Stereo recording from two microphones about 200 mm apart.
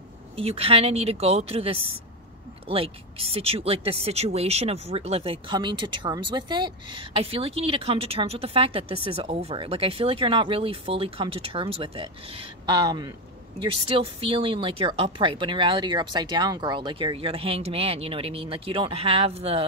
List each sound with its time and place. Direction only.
0.4 s speech: 30° right (ahead or behind)